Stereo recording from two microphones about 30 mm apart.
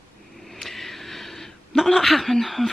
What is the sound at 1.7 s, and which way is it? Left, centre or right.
Speech, centre.